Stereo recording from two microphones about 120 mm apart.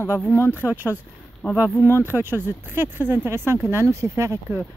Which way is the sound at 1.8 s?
20° right (ahead or behind).